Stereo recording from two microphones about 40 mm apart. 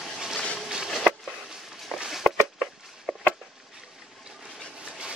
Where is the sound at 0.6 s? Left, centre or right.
Centre.